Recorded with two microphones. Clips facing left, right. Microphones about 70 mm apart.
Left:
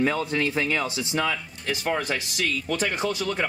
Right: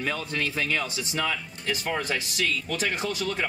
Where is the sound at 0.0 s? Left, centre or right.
Centre.